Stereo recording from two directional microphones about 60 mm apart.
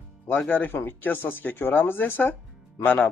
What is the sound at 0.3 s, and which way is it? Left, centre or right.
Speech, left.